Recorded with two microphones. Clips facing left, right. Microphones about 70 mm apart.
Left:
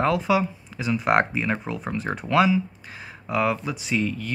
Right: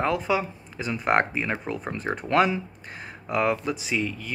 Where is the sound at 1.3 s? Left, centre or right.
Centre.